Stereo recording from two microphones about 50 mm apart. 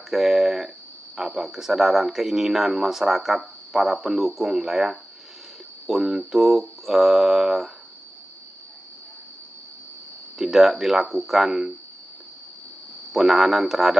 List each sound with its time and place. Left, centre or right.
0.1 s a sound: centre
1.1 s speech: centre
10.3 s speech: centre
13.1 s speech: centre